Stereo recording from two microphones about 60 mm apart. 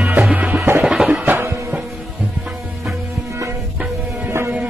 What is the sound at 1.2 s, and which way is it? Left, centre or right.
Music, right.